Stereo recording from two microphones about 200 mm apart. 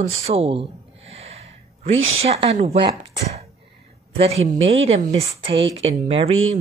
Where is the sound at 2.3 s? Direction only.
30° right (ahead or behind).